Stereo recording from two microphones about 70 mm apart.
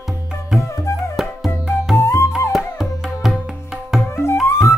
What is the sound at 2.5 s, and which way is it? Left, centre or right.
Music, centre.